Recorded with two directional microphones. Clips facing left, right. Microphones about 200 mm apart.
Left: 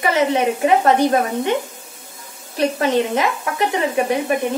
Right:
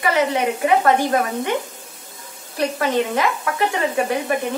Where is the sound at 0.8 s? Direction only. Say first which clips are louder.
Left 2 dB; 25° left (ahead or behind).